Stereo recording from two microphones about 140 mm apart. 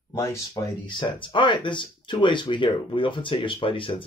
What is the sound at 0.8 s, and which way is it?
Speech, 35° left (ahead or behind).